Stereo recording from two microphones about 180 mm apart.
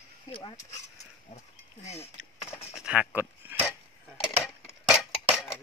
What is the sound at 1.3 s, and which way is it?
Speech, 40° left (ahead or behind).